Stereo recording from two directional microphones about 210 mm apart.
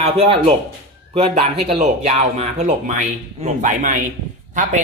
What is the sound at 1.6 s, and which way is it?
A man's voice, 30° right (ahead or behind).